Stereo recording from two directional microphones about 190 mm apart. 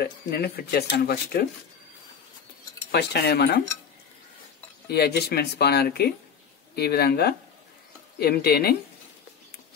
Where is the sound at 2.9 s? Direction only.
60° left (ahead or behind).